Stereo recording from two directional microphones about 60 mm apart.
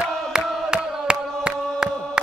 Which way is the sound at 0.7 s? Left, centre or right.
Centre.